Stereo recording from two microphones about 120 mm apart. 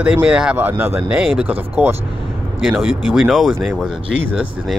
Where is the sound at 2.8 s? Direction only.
5° right (ahead or behind).